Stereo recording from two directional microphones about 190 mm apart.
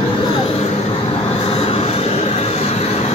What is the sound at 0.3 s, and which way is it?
Vehicle, 30° left (ahead or behind).